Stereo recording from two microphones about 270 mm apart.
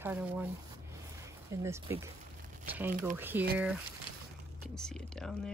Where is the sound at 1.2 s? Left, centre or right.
Centre.